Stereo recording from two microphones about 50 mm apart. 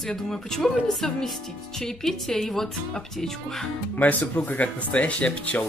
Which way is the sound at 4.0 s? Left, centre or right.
Left.